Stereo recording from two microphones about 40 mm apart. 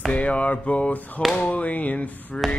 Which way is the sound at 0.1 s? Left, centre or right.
Left.